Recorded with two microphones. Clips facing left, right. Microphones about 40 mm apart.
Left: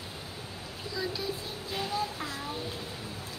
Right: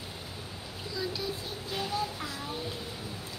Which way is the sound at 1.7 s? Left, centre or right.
Left.